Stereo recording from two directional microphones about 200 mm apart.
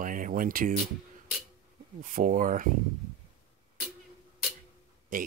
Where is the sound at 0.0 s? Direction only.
40° right (ahead or behind).